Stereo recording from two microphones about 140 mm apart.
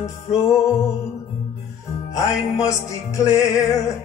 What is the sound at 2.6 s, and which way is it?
Music, 20° left (ahead or behind).